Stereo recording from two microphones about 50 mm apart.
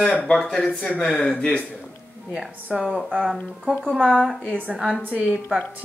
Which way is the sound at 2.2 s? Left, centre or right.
Centre.